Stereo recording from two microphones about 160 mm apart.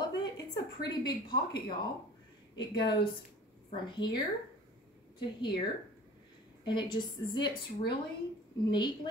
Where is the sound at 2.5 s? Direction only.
30° left (ahead or behind).